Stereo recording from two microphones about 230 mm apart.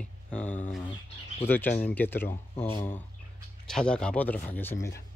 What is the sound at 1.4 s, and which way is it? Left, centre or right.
Speech, centre.